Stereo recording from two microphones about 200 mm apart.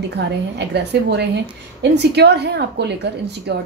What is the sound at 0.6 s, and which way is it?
A woman's voice, 55° right (ahead or behind).